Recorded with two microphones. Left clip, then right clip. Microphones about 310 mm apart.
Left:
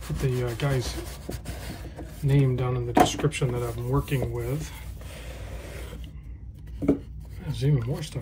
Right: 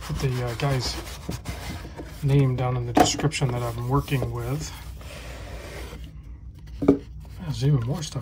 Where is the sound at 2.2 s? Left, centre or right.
Centre.